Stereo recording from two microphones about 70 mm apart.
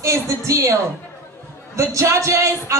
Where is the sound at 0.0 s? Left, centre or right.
Right.